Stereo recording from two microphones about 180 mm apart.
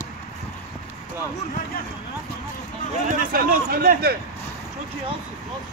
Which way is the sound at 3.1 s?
50° right (ahead or behind).